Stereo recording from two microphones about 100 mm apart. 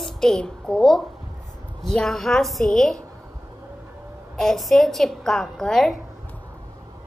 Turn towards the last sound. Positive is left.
turn(degrees=5)  # may be behind; listen again after turning